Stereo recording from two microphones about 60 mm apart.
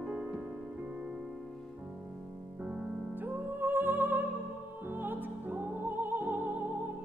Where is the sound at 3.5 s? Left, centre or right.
Right.